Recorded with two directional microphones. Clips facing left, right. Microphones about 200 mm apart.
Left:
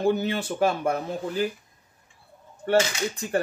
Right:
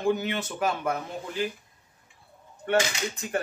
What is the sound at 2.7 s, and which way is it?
Speech, 30° left (ahead or behind).